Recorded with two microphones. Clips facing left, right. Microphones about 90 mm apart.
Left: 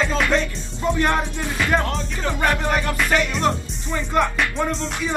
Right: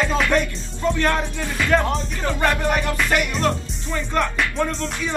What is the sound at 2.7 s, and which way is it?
Music, 15° left (ahead or behind).